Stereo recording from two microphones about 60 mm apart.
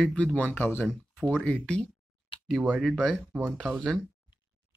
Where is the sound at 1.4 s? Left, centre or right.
Centre.